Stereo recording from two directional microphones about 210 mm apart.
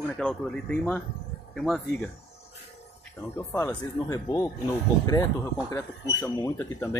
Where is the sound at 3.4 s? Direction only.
10° left (ahead or behind).